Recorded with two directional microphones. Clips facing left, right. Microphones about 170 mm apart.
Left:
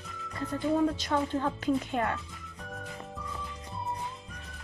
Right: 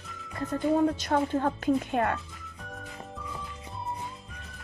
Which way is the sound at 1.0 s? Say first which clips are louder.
Right 3 dB; 50° right (ahead or behind).